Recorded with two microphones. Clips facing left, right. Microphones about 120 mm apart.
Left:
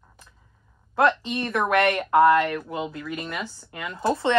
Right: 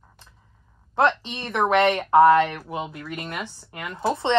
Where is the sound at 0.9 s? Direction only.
25° right (ahead or behind).